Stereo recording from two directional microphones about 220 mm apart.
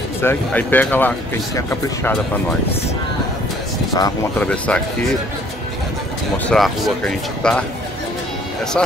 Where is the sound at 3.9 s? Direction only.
15° left (ahead or behind).